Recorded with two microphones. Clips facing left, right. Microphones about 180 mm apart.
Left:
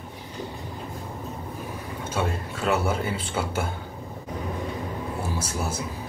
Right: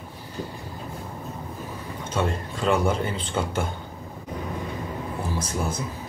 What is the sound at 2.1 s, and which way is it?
Speech, 5° left (ahead or behind).